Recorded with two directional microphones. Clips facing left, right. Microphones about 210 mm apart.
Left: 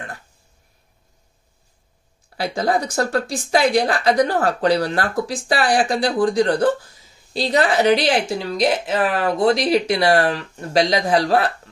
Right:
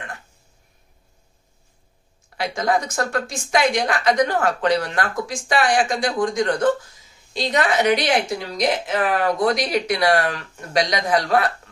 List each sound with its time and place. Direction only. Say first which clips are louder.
2.2 s a woman's voice: left 1 dB; 35° left (ahead or behind)